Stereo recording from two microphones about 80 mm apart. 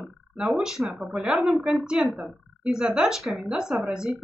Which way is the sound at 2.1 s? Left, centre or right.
Centre.